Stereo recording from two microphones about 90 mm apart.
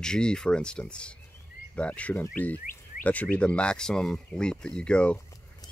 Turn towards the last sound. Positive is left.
turn(degrees=10)  # may be behind; listen again after turning